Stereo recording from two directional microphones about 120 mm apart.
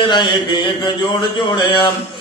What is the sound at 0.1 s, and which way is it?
Mantra, 40° left (ahead or behind).